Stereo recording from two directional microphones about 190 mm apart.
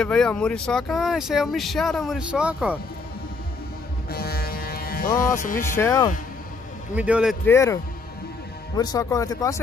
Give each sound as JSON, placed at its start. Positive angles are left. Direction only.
{"t": 0.0, "sound": "speech", "side_deg": 5}
{"t": 4.1, "sound": "a sound", "side_deg": 55}
{"t": 5.8, "sound": "speech", "side_deg": 15}
{"t": 7.0, "sound": "speech", "side_deg": -5}
{"t": 7.4, "sound": "speech", "side_deg": 15}